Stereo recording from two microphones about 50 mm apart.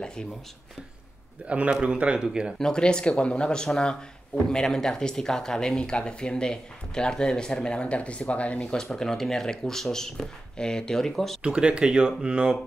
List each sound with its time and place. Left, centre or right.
0.0 s speech: centre
1.4 s speech: right
2.6 s speech: centre
8.6 s speech: centre
11.4 s speech: centre